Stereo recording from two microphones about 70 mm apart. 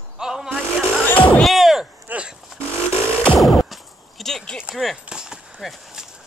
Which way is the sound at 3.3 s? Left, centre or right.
Centre.